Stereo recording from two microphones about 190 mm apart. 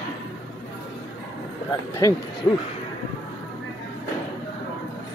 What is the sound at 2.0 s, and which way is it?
Speech, 15° left (ahead or behind).